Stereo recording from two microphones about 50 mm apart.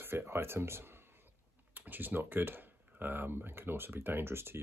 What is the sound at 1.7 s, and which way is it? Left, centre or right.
Speech, right.